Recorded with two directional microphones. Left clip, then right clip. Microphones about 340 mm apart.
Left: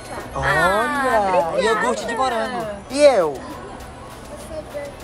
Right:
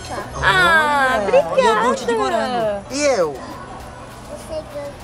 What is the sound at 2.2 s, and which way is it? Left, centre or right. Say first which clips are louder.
Speech: right 2 dB; centre.